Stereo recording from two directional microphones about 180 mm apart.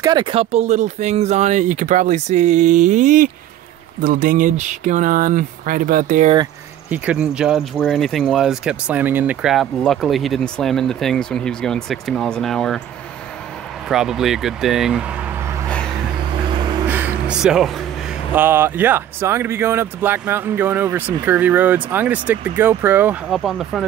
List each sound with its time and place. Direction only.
0.0 s speech: 25° right (ahead or behind); by 6.3 s 45° right (ahead or behind)
6.9 s speech: 5° right (ahead or behind)
13.8 s speech: centre (ahead or behind)
16.8 s a sound: 10° right (ahead or behind)
18.3 s speech: 10° right (ahead or behind)
23.3 s speech: centre (ahead or behind)